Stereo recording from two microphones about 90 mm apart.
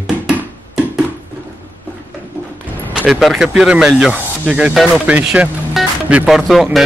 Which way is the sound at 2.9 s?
10° right (ahead or behind).